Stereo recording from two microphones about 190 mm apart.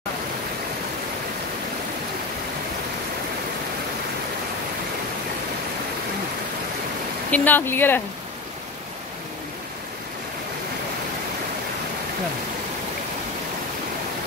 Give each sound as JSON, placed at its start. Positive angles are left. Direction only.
{"t": 7.2, "sound": "speech", "side_deg": 10}